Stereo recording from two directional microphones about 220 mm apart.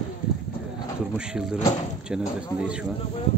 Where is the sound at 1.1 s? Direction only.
5° right (ahead or behind).